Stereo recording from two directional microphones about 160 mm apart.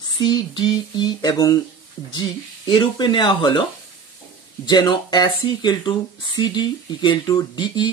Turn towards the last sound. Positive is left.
turn(degrees=25)  # may be behind; listen again after turning